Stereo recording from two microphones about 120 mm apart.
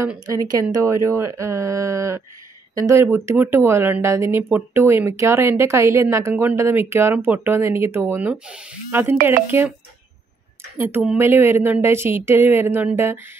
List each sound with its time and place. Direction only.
0.3 s speech: 30° right (ahead or behind)
3.0 s speech: 20° right (ahead or behind)
10.8 s a woman's voice: 20° right (ahead or behind)